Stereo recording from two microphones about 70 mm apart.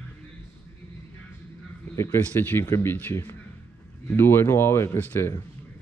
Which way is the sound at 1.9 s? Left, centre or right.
Left.